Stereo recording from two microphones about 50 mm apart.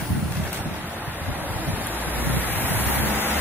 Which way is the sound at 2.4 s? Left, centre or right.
Right.